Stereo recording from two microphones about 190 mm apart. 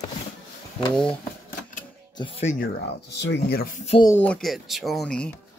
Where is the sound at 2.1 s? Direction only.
25° left (ahead or behind).